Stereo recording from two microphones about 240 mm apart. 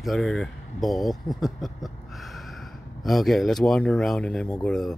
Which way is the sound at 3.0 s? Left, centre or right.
Centre.